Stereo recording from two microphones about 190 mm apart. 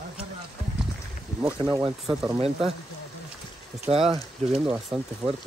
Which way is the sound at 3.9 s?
30° right (ahead or behind).